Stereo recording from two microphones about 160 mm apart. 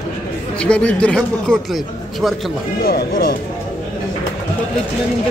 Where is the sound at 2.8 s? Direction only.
70° left (ahead or behind).